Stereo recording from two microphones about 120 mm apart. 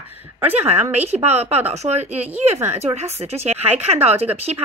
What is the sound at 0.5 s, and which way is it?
Speech, 60° right (ahead or behind).